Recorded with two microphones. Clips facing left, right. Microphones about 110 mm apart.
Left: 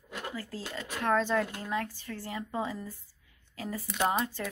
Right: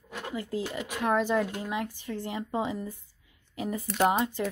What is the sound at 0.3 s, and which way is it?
Speech, 20° right (ahead or behind).